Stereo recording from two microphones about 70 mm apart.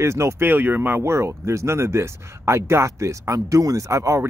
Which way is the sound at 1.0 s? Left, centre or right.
Right.